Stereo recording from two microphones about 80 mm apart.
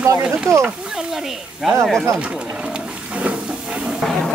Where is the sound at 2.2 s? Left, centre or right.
Centre.